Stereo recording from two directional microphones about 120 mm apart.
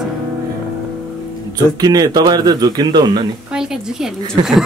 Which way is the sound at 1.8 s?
35° right (ahead or behind).